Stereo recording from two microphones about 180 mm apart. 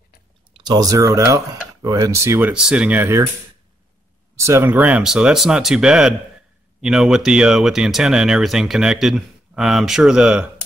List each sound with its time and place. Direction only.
0.5 s speech: 25° right (ahead or behind)
4.4 s speech: 15° right (ahead or behind)